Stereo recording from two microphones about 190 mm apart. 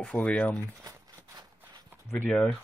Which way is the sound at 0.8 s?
20° right (ahead or behind).